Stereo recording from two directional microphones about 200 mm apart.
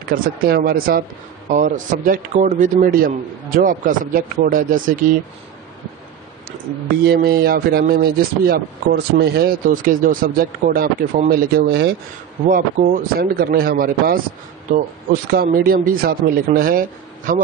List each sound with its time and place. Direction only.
0.1 s speech: 50° right (ahead or behind)
7.1 s speech: 50° right (ahead or behind)
15.3 s speech: 50° right (ahead or behind)